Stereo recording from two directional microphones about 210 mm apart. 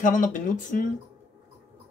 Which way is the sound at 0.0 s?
35° left (ahead or behind).